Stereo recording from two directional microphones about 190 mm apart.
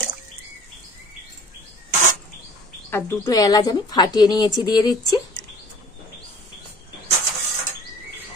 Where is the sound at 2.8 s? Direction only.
15° left (ahead or behind).